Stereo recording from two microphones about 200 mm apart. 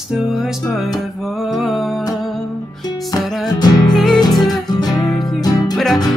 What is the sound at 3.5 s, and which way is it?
Music, 20° left (ahead or behind).